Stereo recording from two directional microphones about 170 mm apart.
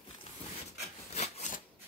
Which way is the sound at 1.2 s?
45° left (ahead or behind).